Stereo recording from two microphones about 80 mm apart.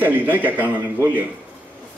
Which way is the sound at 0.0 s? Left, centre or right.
Right.